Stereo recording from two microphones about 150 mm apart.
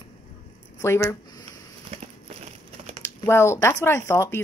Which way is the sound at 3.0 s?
15° left (ahead or behind).